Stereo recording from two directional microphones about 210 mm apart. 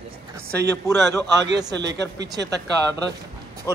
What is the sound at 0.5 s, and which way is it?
Speech, 50° right (ahead or behind).